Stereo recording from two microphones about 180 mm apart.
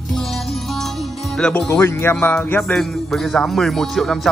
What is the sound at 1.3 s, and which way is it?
Speech, 5° left (ahead or behind).